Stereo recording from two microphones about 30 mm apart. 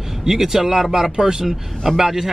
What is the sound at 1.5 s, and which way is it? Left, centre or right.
Speech, centre.